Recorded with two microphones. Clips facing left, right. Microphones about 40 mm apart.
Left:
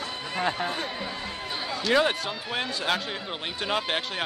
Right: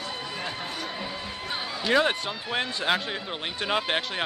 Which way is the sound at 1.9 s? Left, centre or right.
Centre.